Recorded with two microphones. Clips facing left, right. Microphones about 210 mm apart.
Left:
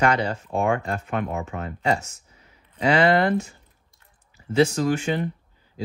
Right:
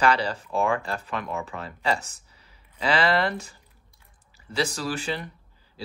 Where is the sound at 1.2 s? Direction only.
35° left (ahead or behind).